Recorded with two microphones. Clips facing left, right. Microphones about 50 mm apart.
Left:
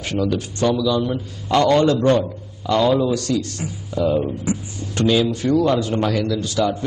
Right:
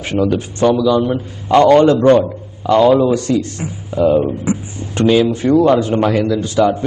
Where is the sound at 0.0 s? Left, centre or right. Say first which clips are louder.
Right 5 dB; right.